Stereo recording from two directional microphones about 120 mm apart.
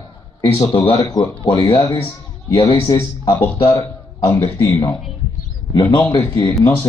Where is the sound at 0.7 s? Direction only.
45° left (ahead or behind).